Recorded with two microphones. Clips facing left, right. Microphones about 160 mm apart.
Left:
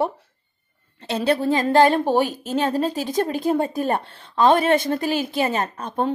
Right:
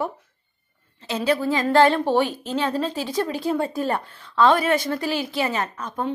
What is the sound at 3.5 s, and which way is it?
A woman's voice, 20° left (ahead or behind).